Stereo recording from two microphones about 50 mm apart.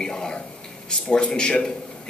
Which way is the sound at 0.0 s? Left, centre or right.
Centre.